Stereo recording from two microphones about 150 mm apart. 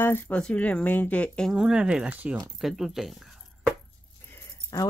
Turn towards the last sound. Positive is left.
turn(degrees=20)  # may be behind; listen again after turning